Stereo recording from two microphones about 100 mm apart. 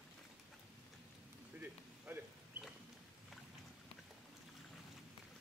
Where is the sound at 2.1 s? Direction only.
20° right (ahead or behind).